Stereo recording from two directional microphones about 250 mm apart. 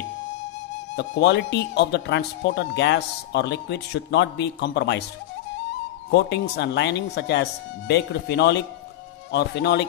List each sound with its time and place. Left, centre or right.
0.9 s speech: left
6.0 s speech: left